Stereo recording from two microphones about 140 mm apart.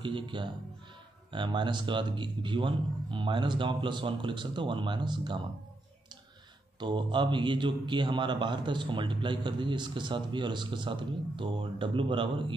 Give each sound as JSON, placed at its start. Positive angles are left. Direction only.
{"t": 0.0, "sound": "a man's voice", "side_deg": -35}
{"t": 6.8, "sound": "a man's voice", "side_deg": -35}